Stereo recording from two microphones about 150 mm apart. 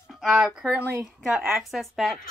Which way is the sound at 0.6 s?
10° right (ahead or behind).